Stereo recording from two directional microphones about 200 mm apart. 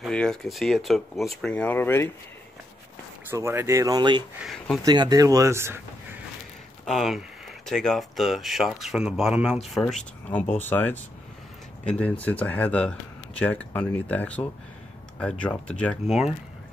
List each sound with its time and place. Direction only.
0.0 s speech: 5° left (ahead or behind)
3.3 s speech: 15° right (ahead or behind)
4.4 s speech: centre (ahead or behind)
4.8 s speech: 20° right (ahead or behind)
6.9 s speech: centre (ahead or behind)